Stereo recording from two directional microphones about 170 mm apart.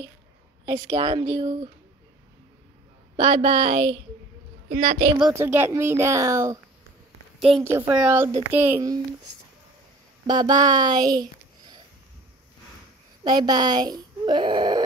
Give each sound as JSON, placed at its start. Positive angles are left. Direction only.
{"t": 0.7, "sound": "speech", "side_deg": -30}
{"t": 3.2, "sound": "speech", "side_deg": -35}
{"t": 4.6, "sound": "a woman's voice", "side_deg": -40}
{"t": 5.3, "sound": "speech", "side_deg": -15}
{"t": 7.3, "sound": "a woman's voice", "side_deg": 0}
{"t": 7.6, "sound": "speech", "side_deg": -15}
{"t": 10.2, "sound": "speech", "side_deg": -25}
{"t": 13.2, "sound": "speech", "side_deg": -25}